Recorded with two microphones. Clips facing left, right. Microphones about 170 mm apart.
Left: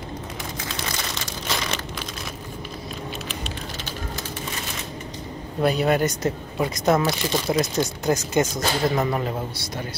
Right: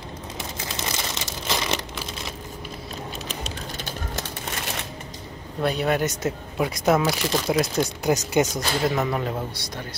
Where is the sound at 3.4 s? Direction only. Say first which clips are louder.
Even; 45° right (ahead or behind).